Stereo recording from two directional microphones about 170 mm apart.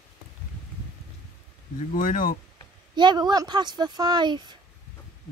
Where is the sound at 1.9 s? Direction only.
50° left (ahead or behind).